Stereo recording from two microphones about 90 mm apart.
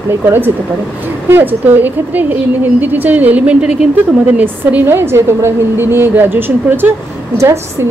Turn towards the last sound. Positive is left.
turn(degrees=-30)  # may be behind; listen again after turning